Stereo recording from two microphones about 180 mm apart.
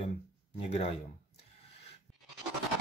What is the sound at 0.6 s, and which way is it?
Speech, 35° left (ahead or behind).